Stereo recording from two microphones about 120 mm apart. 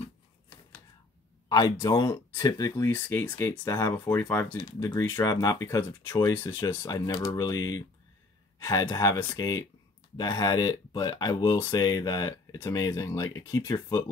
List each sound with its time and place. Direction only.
1.5 s speech: 30° left (ahead or behind)
4.6 s speech: 40° left (ahead or behind)
4.8 s speech: 20° left (ahead or behind)